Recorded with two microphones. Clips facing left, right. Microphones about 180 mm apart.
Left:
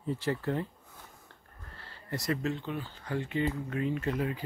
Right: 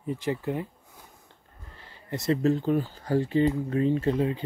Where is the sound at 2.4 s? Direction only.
40° right (ahead or behind).